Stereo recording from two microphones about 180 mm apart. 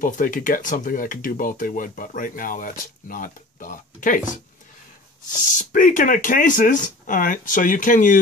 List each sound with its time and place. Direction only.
0.0 s speech: 50° left (ahead or behind)
5.6 s speech: 45° left (ahead or behind)